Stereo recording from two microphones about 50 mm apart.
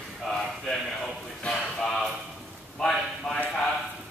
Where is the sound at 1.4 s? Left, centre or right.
Centre.